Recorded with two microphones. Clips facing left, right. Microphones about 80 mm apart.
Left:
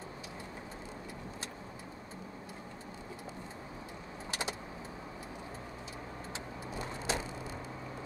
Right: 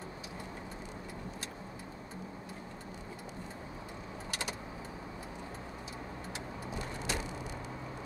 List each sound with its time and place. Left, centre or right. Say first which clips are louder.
4.3 s vehicle: left 2 dB; left
6.8 s vehicle: left 3 dB; left